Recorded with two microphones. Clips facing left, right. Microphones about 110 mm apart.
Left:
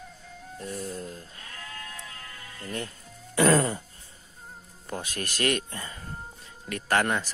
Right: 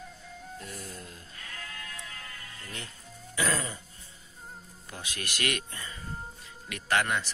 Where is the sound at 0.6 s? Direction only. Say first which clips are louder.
Left 11 dB; 30° left (ahead or behind).